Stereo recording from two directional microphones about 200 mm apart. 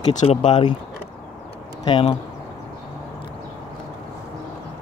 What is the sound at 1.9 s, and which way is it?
Speech, 25° left (ahead or behind).